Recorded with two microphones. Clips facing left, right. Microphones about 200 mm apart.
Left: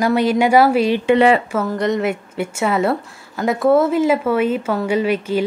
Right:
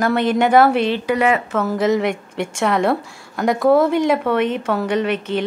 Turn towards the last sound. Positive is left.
turn(degrees=10)  # may be behind; listen again after turning